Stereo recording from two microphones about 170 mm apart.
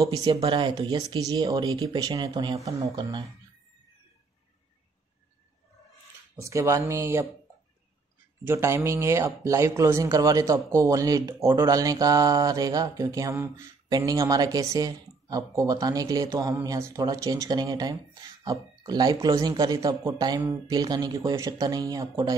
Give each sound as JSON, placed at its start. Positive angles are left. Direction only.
{"t": 0.1, "sound": "speech", "side_deg": -20}
{"t": 6.3, "sound": "speech", "side_deg": -15}
{"t": 8.5, "sound": "speech", "side_deg": -15}